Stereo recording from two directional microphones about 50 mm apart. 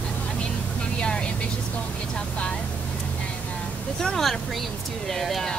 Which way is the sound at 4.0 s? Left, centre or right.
Centre.